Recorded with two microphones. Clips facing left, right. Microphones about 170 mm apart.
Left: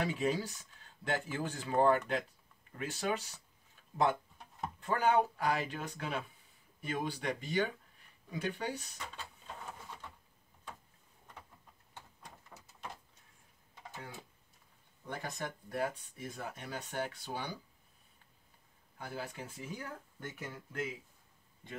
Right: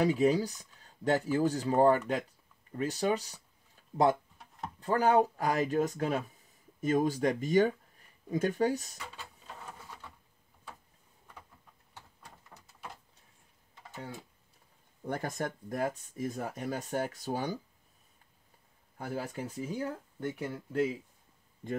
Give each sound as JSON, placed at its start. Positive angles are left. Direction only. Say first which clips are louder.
{"t": 0.0, "sound": "speech", "louder": "right 7 dB", "side_deg": -40}
{"t": 4.7, "sound": "speech", "louder": "right 4 dB", "side_deg": -35}
{"t": 8.9, "sound": "speech", "louder": "right 1 dB", "side_deg": -10}
{"t": 15.0, "sound": "speech", "louder": "right 7 dB", "side_deg": -50}
{"t": 18.9, "sound": "speech", "louder": "right 6 dB", "side_deg": -40}